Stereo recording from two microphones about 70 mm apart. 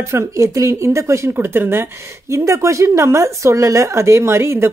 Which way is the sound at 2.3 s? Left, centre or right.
Right.